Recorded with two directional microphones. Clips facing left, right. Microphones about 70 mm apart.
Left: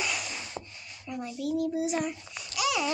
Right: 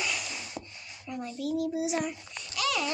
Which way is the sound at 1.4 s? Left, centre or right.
Centre.